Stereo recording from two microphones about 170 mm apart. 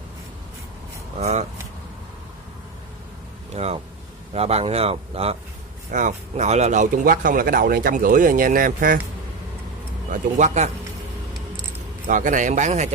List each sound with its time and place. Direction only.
1.1 s speech: 40° right (ahead or behind)
3.6 s speech: 40° right (ahead or behind)
5.9 s speech: 50° right (ahead or behind)
10.3 s speech: 45° right (ahead or behind)
12.1 s speech: 50° right (ahead or behind)